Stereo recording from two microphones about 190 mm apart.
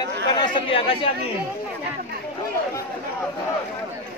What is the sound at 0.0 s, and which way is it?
Speech, 25° left (ahead or behind).